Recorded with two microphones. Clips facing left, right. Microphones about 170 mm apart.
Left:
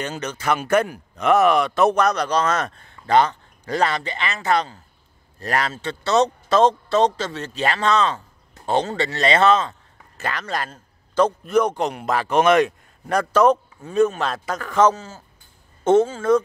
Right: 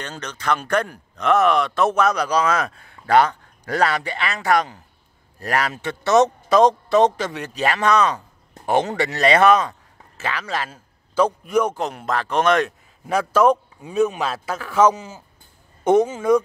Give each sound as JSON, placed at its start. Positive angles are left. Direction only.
{"t": 0.0, "sound": "a man's voice", "side_deg": 10}
{"t": 10.1, "sound": "a man's voice", "side_deg": -5}